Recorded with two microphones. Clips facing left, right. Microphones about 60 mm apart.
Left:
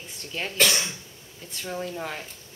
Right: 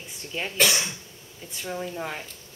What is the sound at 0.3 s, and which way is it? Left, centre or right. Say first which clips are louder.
A man's voice: even; centre.